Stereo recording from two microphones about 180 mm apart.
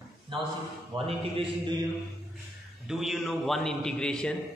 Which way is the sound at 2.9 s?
Centre (ahead or behind).